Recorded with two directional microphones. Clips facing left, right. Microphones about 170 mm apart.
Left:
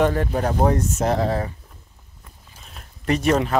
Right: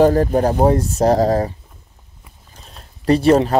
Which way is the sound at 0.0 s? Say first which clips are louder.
Right 7 dB; 40° right (ahead or behind).